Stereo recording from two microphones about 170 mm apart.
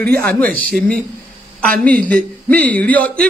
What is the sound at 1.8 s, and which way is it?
A man's voice, 10° left (ahead or behind).